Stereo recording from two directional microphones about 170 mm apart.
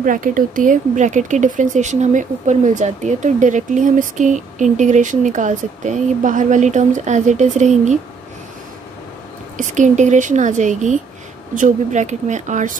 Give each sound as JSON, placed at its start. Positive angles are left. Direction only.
{"t": 0.0, "sound": "speech", "side_deg": -50}
{"t": 9.6, "sound": "speech", "side_deg": -45}